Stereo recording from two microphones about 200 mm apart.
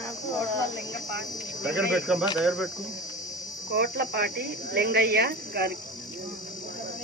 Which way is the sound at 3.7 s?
55° right (ahead or behind).